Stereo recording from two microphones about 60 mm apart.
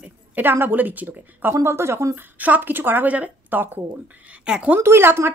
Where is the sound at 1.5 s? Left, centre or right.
Right.